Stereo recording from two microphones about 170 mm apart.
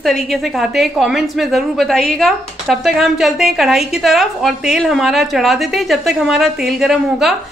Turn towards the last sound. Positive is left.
turn(degrees=0)  # may be behind; listen again after turning